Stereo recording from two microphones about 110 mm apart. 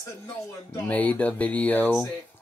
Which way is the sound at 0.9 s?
15° left (ahead or behind).